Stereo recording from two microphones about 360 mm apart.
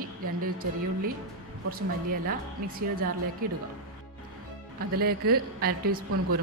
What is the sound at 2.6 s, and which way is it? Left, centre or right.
Speech, right.